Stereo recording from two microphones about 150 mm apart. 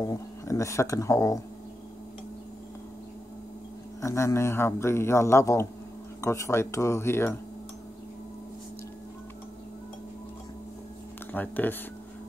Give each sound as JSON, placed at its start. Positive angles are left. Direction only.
{"t": 0.0, "sound": "speech", "side_deg": 20}
{"t": 4.0, "sound": "speech", "side_deg": 20}
{"t": 11.3, "sound": "speech", "side_deg": 10}